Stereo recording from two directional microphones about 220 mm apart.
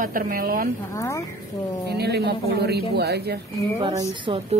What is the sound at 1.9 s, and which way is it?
A man's voice, 45° right (ahead or behind).